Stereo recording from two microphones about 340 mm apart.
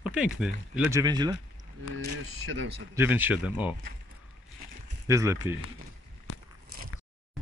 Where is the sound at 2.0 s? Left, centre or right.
Right.